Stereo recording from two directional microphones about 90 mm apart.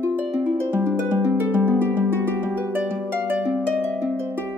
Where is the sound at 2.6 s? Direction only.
20° right (ahead or behind).